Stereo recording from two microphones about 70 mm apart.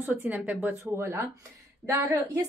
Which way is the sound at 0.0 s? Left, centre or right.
Right.